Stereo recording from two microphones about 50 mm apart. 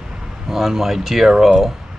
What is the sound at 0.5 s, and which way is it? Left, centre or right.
Speech, centre.